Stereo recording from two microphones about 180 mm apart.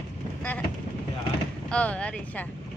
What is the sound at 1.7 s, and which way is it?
Speech, 5° left (ahead or behind).